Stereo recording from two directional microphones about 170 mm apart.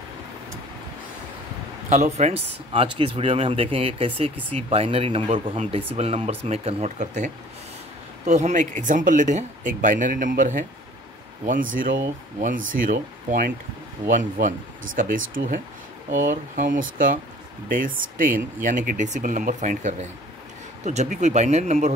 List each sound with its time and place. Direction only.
1.9 s speech: 45° right (ahead or behind)
8.3 s speech: 45° right (ahead or behind)
15.0 s speech: 55° right (ahead or behind)